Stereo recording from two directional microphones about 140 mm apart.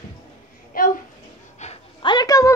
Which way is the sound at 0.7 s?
90° left.